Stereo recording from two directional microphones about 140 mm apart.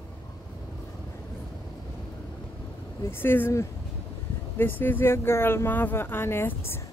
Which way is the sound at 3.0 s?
15° left (ahead or behind).